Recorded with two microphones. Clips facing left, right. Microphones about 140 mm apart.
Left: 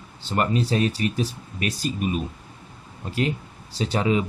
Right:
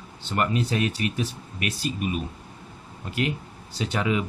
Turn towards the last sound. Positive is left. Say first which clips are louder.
# left 3 dB
turn(degrees=30)  # may be behind; listen again after turning